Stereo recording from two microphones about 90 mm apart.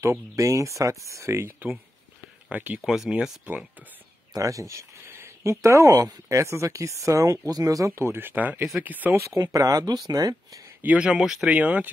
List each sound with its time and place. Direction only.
0.0 s speech: 35° right (ahead or behind); by 2.8 s 15° right (ahead or behind)
2.8 s speech: centre (ahead or behind)
4.3 s speech: 40° right (ahead or behind); by 9.2 s 20° right (ahead or behind)
9.2 s speech: 40° right (ahead or behind)
10.8 s speech: 15° right (ahead or behind)